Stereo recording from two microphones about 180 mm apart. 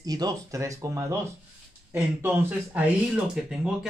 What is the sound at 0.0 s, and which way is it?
Speech, 20° right (ahead or behind).